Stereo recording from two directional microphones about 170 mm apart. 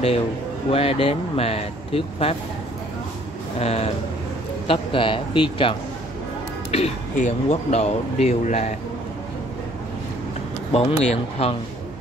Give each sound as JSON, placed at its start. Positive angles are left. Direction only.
{"t": 0.7, "sound": "speech", "side_deg": 35}
{"t": 3.5, "sound": "speech", "side_deg": 40}
{"t": 10.7, "sound": "speech", "side_deg": 35}